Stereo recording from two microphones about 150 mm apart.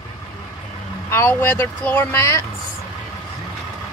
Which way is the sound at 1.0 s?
15° left (ahead or behind).